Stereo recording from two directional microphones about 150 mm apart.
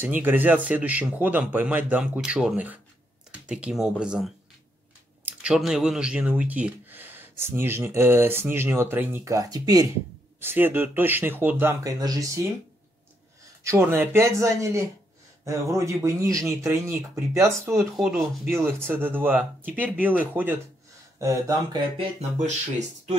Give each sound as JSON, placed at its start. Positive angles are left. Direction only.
{"t": 0.0, "sound": "speech", "side_deg": -15}
{"t": 10.4, "sound": "speech", "side_deg": -15}
{"t": 13.7, "sound": "speech", "side_deg": -15}
{"t": 17.7, "sound": "speech", "side_deg": 0}
{"t": 18.7, "sound": "speech", "side_deg": -15}
{"t": 21.9, "sound": "speech", "side_deg": -45}